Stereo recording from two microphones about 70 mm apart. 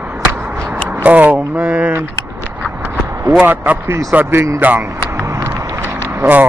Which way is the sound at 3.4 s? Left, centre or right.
Right.